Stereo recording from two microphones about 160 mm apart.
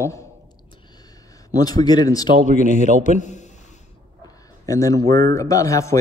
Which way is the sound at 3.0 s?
50° left (ahead or behind).